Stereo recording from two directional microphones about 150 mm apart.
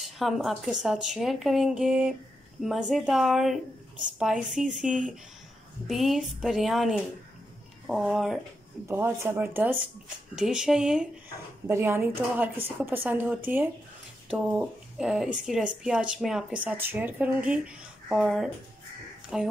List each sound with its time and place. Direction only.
0.2 s speech: centre (ahead or behind)
8.8 s speech: 15° right (ahead or behind)
11.6 s speech: 20° right (ahead or behind)